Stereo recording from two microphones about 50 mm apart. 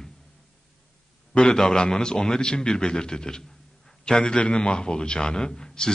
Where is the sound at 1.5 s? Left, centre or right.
Centre.